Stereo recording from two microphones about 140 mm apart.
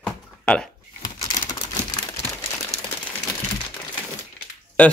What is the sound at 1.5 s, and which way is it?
Crumpling, 30° left (ahead or behind).